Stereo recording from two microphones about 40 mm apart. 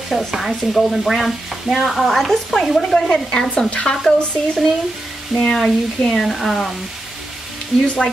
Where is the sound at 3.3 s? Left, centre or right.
Centre.